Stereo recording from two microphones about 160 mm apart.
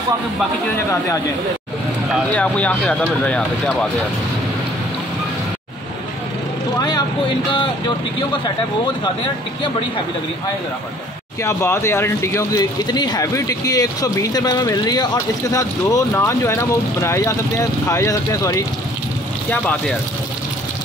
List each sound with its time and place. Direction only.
2.3 s speech: 10° left (ahead or behind)
11.4 s speech: 15° left (ahead or behind)